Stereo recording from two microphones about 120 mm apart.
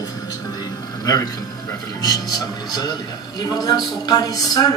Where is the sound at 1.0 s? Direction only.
30° left (ahead or behind).